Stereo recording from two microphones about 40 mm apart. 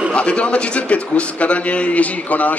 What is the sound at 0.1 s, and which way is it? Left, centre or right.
A man's voice, left.